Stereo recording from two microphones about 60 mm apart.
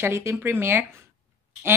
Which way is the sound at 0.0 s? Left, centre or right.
Right.